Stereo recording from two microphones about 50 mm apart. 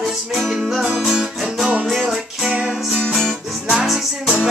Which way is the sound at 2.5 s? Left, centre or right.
Centre.